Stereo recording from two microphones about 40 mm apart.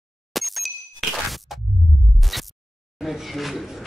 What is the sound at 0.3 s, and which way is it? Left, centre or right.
Bicycle bell, centre.